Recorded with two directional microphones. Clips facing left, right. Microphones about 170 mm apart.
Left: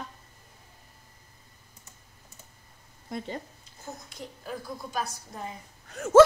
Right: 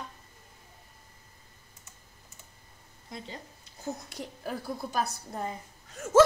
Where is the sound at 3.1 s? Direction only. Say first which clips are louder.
Left 7 dB; 55° left (ahead or behind).